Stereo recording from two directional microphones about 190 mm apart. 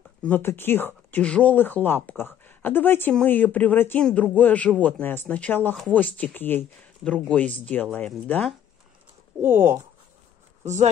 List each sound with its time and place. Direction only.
0.2 s speech: 10° left (ahead or behind)
9.4 s speech: 10° right (ahead or behind)
10.6 s speech: 35° right (ahead or behind)